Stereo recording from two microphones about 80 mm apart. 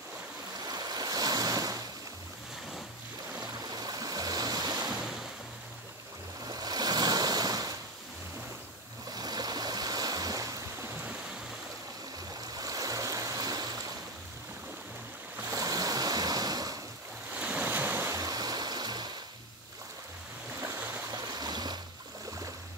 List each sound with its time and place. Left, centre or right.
0.7 s waves: right
3.7 s stream: right
6.4 s waves: right
9.1 s waves: right
10.9 s stream: right
12.4 s stream: right
15.4 s waves: right
17.3 s waves: centre
18.1 s stream: right
21.1 s stream: right